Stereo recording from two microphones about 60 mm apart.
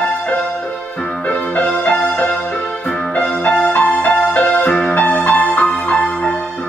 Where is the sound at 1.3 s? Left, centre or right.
Left.